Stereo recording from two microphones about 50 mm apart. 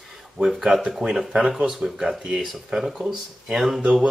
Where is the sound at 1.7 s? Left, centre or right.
Centre.